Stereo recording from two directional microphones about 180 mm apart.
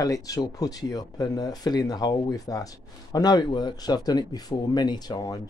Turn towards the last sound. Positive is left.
turn(degrees=20)  # may be behind; listen again after turning